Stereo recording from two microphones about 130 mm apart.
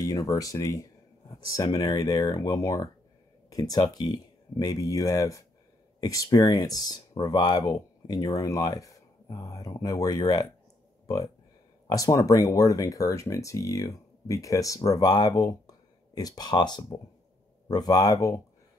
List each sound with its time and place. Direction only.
0.0 s speech: 25° left (ahead or behind)
11.9 s speech: 25° left (ahead or behind)